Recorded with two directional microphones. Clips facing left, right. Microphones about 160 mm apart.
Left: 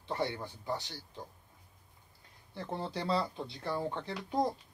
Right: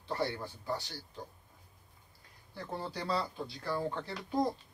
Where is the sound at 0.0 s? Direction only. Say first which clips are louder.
Even; 20° left (ahead or behind).